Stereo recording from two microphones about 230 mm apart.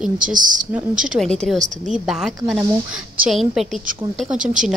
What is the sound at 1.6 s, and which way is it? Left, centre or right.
Speech, right.